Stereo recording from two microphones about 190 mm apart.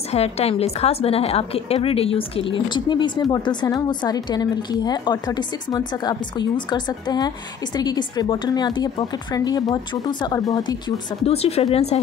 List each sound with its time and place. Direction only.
0.1 s a woman's voice: 35° left (ahead or behind)
11.2 s speech: 30° left (ahead or behind)